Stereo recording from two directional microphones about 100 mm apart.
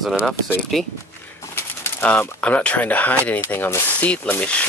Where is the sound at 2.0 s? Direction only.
10° left (ahead or behind).